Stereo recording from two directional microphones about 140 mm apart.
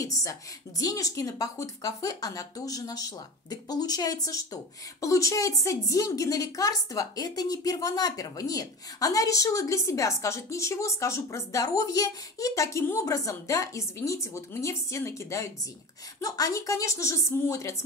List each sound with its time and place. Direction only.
0.0 s a woman's voice: 25° left (ahead or behind)